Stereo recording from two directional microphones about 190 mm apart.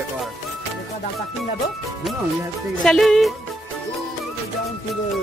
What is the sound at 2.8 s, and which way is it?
Speech, centre (ahead or behind).